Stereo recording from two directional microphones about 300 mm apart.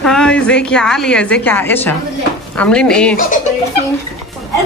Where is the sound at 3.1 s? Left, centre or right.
Left.